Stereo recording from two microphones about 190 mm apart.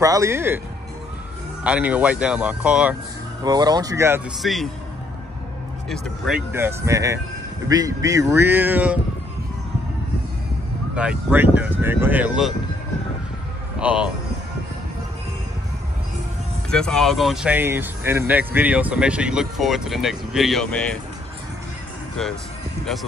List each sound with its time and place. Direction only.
0.0 s speech: 15° right (ahead or behind)
1.6 s speech: 5° right (ahead or behind)
3.4 s speech: 20° right (ahead or behind)
4.4 s speech: centre (ahead or behind)
5.9 s speech: centre (ahead or behind)
6.5 s speech: 15° right (ahead or behind)
11.0 s speech: 5° right (ahead or behind)
13.7 s speech: 5° right (ahead or behind)
16.7 s speech: 5° left (ahead or behind)